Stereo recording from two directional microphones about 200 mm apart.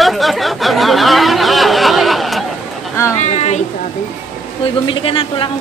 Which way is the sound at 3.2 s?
35° left (ahead or behind).